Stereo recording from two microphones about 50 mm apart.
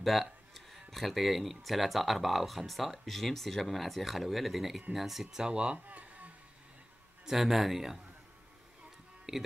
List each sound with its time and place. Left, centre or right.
0.0 s speech: centre
5.9 s a sound: right
7.2 s speech: centre
9.3 s speech: centre